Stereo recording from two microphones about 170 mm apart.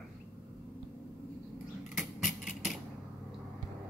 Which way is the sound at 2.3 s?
50° left (ahead or behind).